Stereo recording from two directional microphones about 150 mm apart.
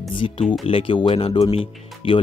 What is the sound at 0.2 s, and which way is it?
Speech, 40° left (ahead or behind).